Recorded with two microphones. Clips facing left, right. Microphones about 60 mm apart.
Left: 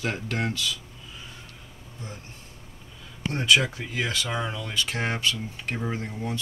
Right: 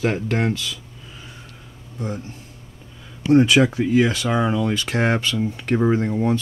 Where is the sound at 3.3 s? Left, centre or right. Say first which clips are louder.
Right 9 dB; centre.